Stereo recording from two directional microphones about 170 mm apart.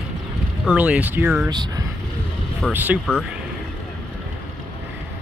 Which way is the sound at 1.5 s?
25° right (ahead or behind).